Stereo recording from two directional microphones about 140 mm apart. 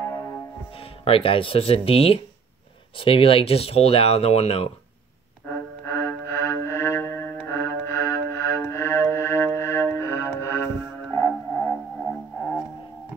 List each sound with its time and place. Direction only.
0.7 s speech: 40° left (ahead or behind)
5.5 s music: 15° left (ahead or behind)